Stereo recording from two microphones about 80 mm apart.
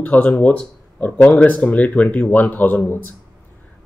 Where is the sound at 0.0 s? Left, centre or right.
Centre.